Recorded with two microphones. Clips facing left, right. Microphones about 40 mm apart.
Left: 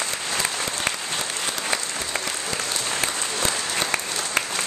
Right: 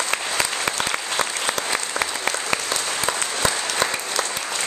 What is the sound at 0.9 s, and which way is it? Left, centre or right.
Applause, right.